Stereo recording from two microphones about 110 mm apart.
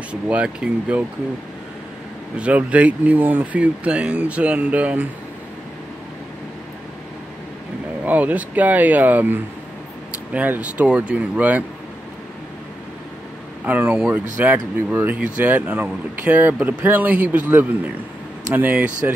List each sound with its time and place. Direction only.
0.1 s speech: 10° right (ahead or behind)
2.3 s speech: 10° right (ahead or behind)
8.0 s speech: 15° right (ahead or behind)
13.7 s speech: 15° right (ahead or behind)